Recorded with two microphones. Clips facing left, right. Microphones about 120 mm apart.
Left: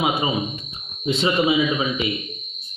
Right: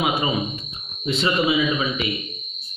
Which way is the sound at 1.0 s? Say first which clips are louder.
Left 2 dB; 20° left (ahead or behind).